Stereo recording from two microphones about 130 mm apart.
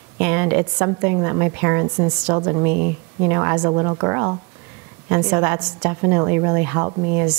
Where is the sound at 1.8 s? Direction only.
30° right (ahead or behind).